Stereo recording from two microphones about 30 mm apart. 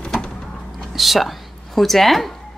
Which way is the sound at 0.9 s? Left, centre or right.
Centre.